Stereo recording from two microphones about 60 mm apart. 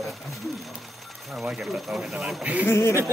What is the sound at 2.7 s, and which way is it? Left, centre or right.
Speech, left.